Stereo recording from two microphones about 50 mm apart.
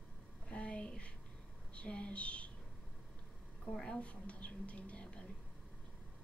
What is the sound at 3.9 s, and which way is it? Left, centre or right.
Speech, left.